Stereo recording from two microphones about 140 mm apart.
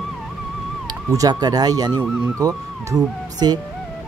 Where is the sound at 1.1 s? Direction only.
25° right (ahead or behind).